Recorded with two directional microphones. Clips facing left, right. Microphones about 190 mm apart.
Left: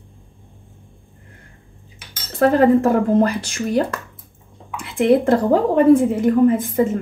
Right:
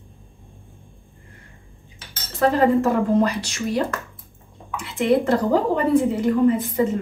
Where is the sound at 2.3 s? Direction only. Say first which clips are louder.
Left 4 dB; 55° left (ahead or behind).